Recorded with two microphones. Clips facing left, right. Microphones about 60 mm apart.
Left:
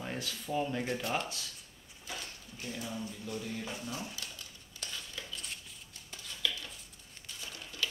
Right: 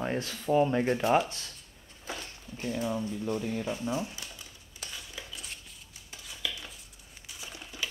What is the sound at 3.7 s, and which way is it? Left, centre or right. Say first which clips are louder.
Speech: right 8 dB; right.